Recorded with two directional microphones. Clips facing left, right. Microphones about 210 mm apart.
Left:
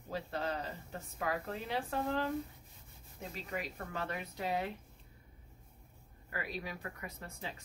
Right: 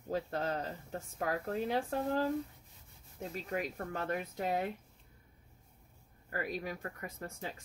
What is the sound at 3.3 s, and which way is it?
Speech, 45° right (ahead or behind).